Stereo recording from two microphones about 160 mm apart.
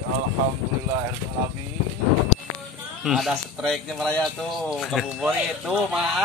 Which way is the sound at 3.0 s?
Centre (ahead or behind).